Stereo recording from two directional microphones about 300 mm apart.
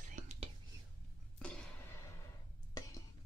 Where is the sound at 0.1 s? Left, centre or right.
Right.